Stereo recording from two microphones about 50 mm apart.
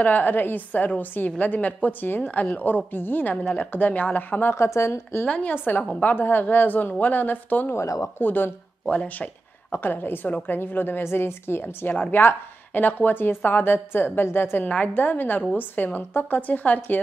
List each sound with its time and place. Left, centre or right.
0.0 s a woman's voice: left
4.5 s a woman's voice: left
5.8 s a woman's voice: left
6.1 s a woman's voice: left
8.9 s a woman's voice: left
9.7 s a woman's voice: left
12.1 s a woman's voice: left
14.6 s a woman's voice: left
15.0 s a woman's voice: left